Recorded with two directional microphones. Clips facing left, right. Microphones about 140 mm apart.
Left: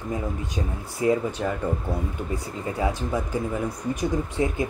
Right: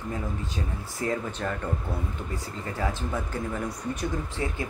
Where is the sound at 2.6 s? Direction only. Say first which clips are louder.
Left 4 dB; 15° left (ahead or behind).